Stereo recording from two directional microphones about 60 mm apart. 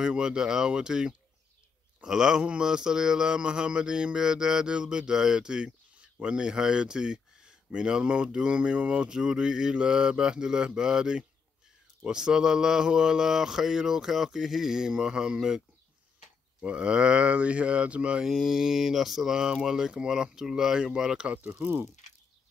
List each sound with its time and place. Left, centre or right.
0.0 s a man's voice: centre
16.6 s speech: centre
18.2 s a man's voice: centre
21.5 s speech: right